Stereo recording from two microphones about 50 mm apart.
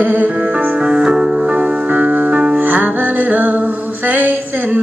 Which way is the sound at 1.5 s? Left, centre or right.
Right.